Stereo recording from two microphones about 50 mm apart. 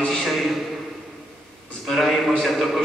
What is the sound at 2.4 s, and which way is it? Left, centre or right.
Speech, centre.